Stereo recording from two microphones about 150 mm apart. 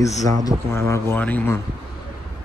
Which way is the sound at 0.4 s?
20° left (ahead or behind).